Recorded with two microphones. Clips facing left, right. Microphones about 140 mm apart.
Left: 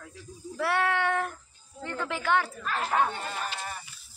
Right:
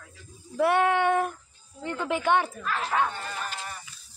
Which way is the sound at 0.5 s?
20° right (ahead or behind).